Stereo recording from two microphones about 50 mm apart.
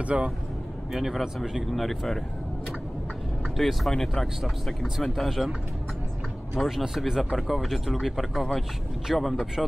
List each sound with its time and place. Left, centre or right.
0.0 s speech: right
0.9 s speech: centre
1.7 s speech: centre
3.5 s speech: centre
5.3 s speech: centre
6.7 s speech: centre